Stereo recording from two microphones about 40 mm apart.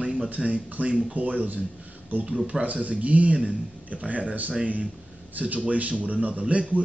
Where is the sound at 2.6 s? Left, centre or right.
Right.